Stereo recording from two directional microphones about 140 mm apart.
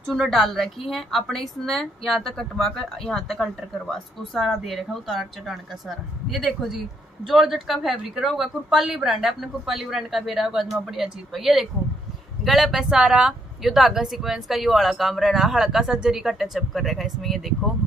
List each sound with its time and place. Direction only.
0.1 s a woman's voice: centre (ahead or behind)